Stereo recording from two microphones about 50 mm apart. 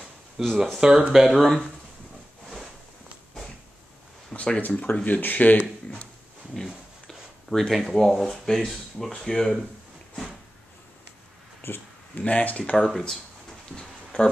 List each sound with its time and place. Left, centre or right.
0.4 s speech: centre
1.1 s speech: centre
4.3 s a sound: centre
4.6 s speech: left
6.5 s a sound: centre
7.7 s speech: centre
11.6 s speech: left
12.2 s speech: left
12.7 s speech: centre
14.1 s speech: left